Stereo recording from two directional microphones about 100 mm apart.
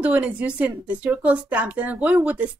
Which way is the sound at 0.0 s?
15° right (ahead or behind).